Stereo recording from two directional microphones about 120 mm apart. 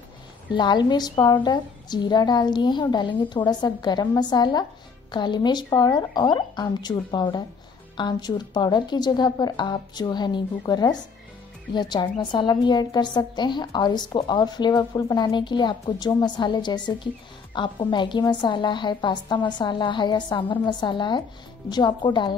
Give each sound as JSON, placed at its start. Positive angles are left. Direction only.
{"t": 0.5, "sound": "a woman's voice", "side_deg": 40}